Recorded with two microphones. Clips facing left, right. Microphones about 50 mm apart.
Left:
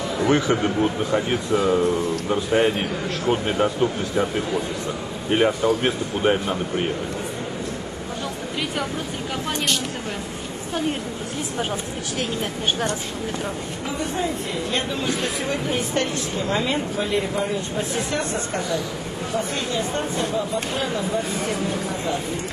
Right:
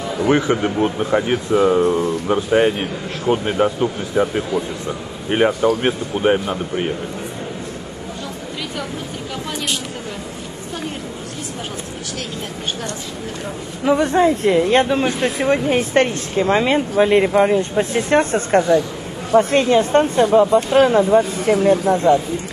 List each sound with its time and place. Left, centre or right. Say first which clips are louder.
0.5 s speech: right 3 dB; centre
0.8 s speech: right 4 dB; right
3.3 s speech: right 4 dB; centre
5.3 s speech: right 3 dB; right
12.2 s speech: left 4 dB; centre
13.8 s speech: right 12 dB; right